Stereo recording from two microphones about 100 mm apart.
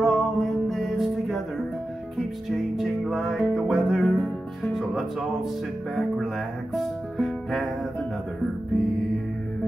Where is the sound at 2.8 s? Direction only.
Centre (ahead or behind).